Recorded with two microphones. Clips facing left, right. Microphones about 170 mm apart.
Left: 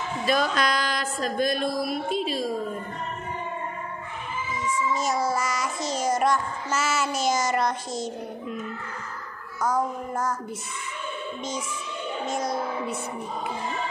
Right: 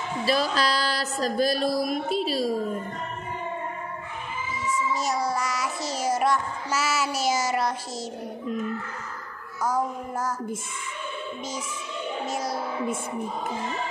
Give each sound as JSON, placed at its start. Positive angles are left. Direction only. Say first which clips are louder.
{"t": 0.2, "sound": "speech", "louder": "even", "side_deg": -35}
{"t": 4.9, "sound": "child singing", "louder": "left 3 dB", "side_deg": 0}
{"t": 9.6, "sound": "child singing", "louder": "left 1 dB", "side_deg": -5}
{"t": 12.3, "sound": "child singing", "louder": "left 4 dB", "side_deg": -5}